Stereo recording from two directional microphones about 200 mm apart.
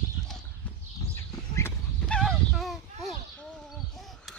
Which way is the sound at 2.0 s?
5° left (ahead or behind).